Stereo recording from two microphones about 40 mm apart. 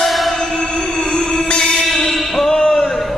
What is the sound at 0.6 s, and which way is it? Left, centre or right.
Music, centre.